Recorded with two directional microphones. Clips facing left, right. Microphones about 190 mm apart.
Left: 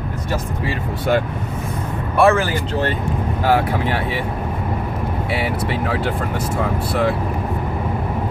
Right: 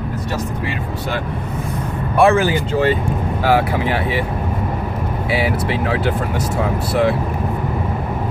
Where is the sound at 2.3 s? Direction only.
15° right (ahead or behind).